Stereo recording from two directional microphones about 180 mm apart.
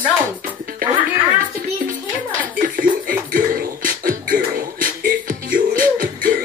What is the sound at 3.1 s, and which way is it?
Beatboxing, 50° right (ahead or behind).